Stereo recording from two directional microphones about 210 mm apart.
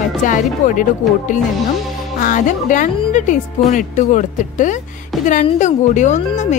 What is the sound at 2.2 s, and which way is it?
A woman's voice, 40° left (ahead or behind).